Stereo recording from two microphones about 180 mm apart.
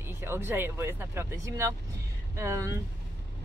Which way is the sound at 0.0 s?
15° right (ahead or behind).